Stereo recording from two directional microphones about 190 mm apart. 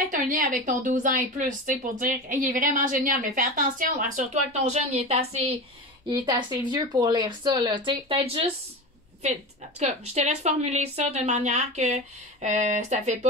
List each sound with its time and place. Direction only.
0.0 s a woman's voice: 45° right (ahead or behind)
6.0 s speech: 20° right (ahead or behind)
9.8 s a woman's voice: 35° right (ahead or behind)